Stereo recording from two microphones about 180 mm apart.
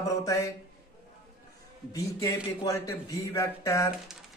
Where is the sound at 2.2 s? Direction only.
20° left (ahead or behind).